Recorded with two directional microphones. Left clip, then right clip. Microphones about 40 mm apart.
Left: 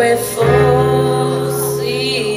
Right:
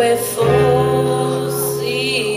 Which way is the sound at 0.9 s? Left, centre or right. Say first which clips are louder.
Left 2 dB; right.